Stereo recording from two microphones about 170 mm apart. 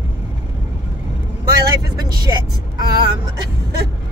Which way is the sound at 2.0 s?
20° right (ahead or behind).